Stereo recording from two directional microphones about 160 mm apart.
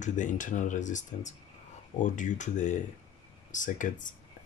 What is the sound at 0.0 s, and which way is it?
Speech, 50° left (ahead or behind).